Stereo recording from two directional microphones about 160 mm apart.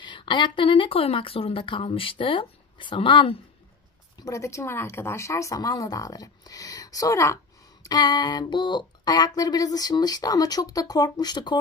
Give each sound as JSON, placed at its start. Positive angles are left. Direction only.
{"t": 0.0, "sound": "speech", "side_deg": 30}
{"t": 4.2, "sound": "speech", "side_deg": 20}